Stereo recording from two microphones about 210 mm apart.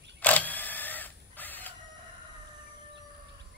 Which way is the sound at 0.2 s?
5° left (ahead or behind).